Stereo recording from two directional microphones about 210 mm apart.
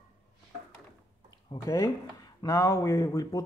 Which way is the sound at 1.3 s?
20° left (ahead or behind).